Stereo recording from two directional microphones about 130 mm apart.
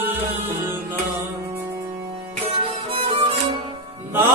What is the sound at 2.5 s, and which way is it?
Music, 45° right (ahead or behind).